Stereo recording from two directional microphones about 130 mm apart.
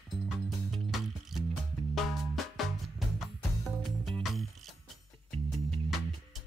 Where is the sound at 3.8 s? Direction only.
Centre (ahead or behind).